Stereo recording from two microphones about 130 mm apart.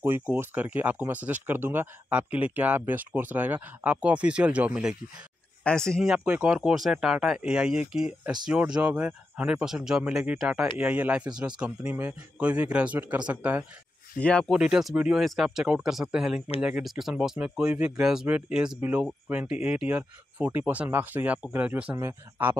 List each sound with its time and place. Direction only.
0.0 s speech: 15° right (ahead or behind)
5.6 s speech: 5° left (ahead or behind)
6.0 s a man's voice: 10° right (ahead or behind)
14.2 s speech: 5° left (ahead or behind)
14.5 s a man's voice: 5° right (ahead or behind)
16.3 s speech: 50° left (ahead or behind)
16.6 s speech: 5° right (ahead or behind)